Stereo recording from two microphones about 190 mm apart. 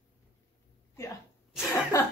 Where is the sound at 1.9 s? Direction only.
15° left (ahead or behind).